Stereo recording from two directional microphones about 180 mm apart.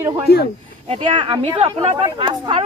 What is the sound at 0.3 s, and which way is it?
Speech, 60° left (ahead or behind).